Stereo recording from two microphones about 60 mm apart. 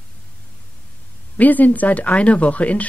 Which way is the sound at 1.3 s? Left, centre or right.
Left.